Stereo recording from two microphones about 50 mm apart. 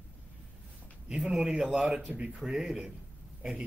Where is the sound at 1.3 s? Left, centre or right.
Centre.